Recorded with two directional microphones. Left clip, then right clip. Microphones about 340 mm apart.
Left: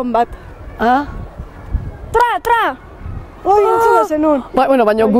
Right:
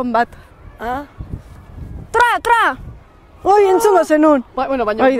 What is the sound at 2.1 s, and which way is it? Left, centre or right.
Speech, right.